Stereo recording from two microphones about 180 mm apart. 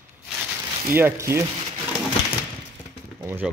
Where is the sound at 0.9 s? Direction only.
15° right (ahead or behind).